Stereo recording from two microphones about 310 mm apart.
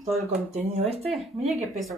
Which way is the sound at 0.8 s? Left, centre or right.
Centre.